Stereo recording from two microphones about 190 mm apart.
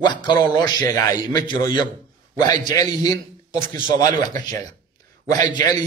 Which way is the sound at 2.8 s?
20° left (ahead or behind).